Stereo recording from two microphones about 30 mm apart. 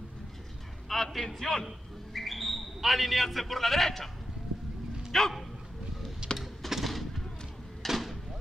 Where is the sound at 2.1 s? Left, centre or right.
Centre.